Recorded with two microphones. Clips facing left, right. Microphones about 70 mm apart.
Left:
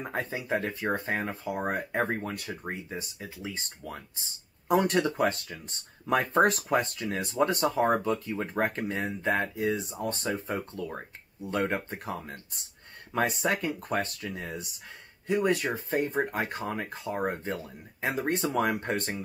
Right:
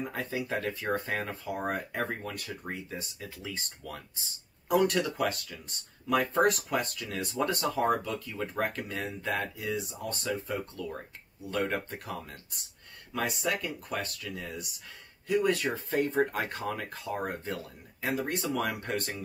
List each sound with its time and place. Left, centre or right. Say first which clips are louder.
0.0 s speech: left 1 dB; left
1.8 s speech: left 4 dB; left